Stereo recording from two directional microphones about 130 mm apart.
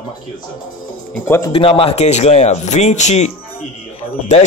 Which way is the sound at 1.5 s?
45° left (ahead or behind).